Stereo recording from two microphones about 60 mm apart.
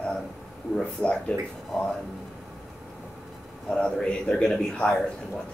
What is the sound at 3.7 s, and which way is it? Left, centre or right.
A man's voice, centre.